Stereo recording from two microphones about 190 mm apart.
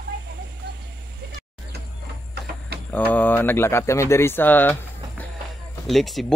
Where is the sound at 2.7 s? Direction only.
60° right (ahead or behind).